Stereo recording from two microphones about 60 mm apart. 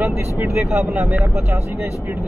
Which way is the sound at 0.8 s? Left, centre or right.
Right.